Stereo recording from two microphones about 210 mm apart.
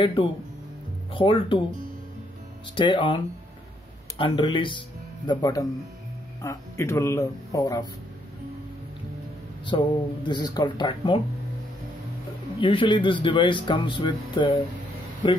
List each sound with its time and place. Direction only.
0.0 s speech: 25° left (ahead or behind)
2.7 s speech: 25° left (ahead or behind)
4.2 s speech: 25° left (ahead or behind)
9.7 s speech: 20° left (ahead or behind)
12.5 s speech: 25° left (ahead or behind)